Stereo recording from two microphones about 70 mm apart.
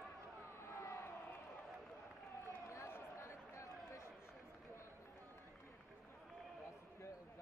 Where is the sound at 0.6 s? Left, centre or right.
Left.